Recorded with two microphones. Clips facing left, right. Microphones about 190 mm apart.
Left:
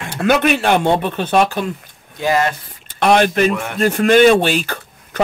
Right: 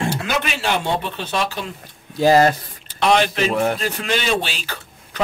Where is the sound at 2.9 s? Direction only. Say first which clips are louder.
Left 4 dB; 50° left (ahead or behind).